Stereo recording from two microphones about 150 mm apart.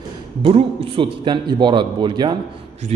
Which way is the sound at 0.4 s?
40° right (ahead or behind).